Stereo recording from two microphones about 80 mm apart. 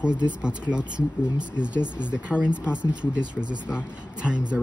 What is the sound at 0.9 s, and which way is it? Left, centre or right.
Speech, right.